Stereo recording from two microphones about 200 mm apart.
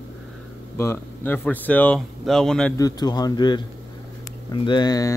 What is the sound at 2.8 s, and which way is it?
Speech, 20° left (ahead or behind).